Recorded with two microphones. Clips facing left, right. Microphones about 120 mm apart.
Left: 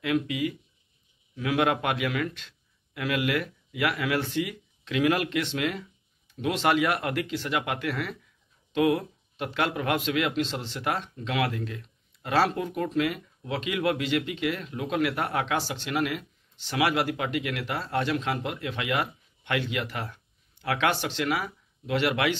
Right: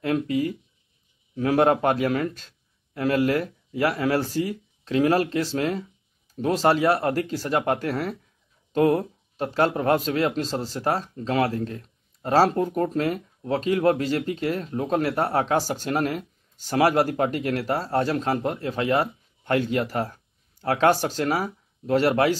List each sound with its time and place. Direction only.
0.0 s a man's voice: 40° right (ahead or behind)